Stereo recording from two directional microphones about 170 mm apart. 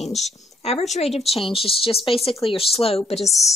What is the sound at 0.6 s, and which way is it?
Speech, 40° left (ahead or behind).